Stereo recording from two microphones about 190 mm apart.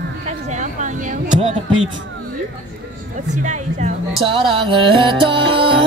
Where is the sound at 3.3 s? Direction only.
40° right (ahead or behind).